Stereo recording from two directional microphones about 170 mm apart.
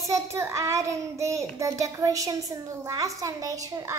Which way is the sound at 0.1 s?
15° right (ahead or behind).